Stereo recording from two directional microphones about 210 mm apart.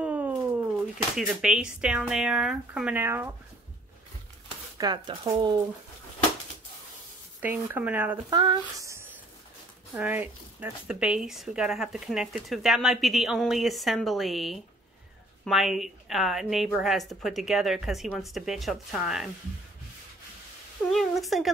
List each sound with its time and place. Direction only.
0.0 s a sound: 10° right (ahead or behind)
1.1 s speech: 5° right (ahead or behind)
4.7 s speech: 20° right (ahead or behind)
7.3 s speech: 10° right (ahead or behind)
20.9 s speech: centre (ahead or behind)